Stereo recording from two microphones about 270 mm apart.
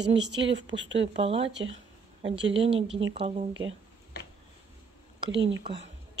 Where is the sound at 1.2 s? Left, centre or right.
Right.